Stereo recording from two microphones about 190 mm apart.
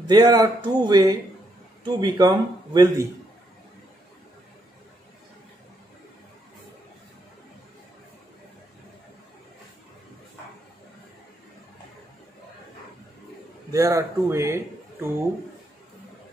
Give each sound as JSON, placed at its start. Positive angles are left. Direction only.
{"t": 0.0, "sound": "a man's voice", "side_deg": -20}
{"t": 13.7, "sound": "speech", "side_deg": -15}